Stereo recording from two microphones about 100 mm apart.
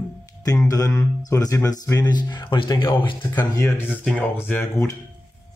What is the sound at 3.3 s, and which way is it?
Speech, 25° left (ahead or behind).